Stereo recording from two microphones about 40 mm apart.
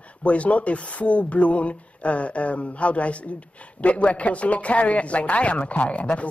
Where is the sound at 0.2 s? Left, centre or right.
Left.